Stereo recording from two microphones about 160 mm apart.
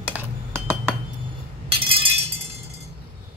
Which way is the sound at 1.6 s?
35° right (ahead or behind).